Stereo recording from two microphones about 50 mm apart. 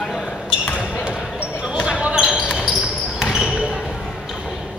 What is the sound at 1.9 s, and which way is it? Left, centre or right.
Basketball bounce, centre.